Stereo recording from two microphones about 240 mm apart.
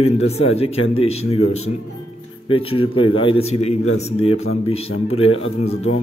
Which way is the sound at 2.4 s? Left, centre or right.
Left.